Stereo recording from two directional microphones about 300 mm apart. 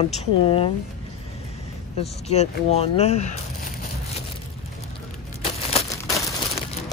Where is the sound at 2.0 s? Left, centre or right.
Left.